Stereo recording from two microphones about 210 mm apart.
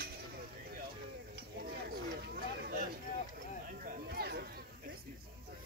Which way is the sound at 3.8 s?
50° right (ahead or behind).